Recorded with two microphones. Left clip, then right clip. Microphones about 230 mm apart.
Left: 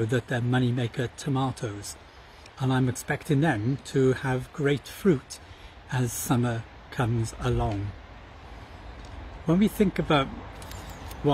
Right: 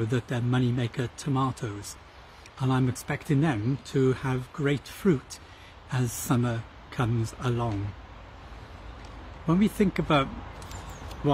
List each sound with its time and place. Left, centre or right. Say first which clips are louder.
0.0 s speech: left 3 dB; centre
9.5 s speech: left 1 dB; centre